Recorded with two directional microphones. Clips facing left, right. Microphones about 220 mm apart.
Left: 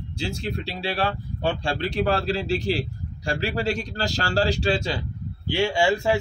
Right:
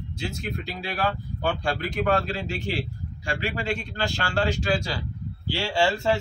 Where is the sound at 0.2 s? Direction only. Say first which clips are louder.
Left 3 dB; 30° left (ahead or behind).